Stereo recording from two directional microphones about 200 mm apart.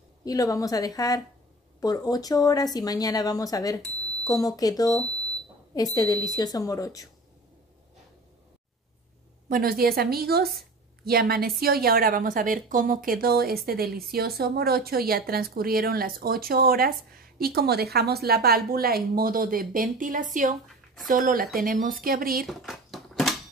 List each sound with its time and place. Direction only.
0.2 s speech: 15° left (ahead or behind)
5.9 s speech: 20° left (ahead or behind)
9.5 s a woman's voice: 50° right (ahead or behind)
22.5 s a sound: centre (ahead or behind)